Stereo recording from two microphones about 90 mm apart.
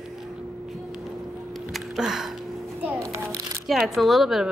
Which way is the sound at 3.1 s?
35° right (ahead or behind).